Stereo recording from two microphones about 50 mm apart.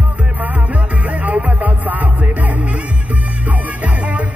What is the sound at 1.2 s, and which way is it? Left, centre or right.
Music, right.